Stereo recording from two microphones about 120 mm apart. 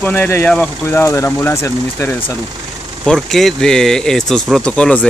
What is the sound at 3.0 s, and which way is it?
Speech, 5° left (ahead or behind).